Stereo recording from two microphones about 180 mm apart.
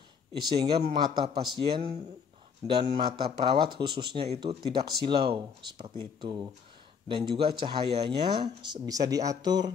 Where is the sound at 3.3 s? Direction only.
25° right (ahead or behind).